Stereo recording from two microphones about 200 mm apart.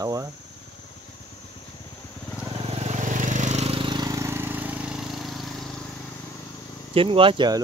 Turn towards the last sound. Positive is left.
turn(degrees=-25)  # may be behind; listen again after turning